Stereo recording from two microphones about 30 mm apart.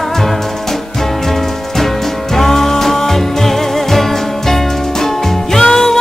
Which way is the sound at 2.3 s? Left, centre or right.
Centre.